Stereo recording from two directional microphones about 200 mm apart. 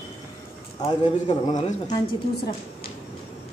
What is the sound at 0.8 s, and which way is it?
Speech, 20° left (ahead or behind).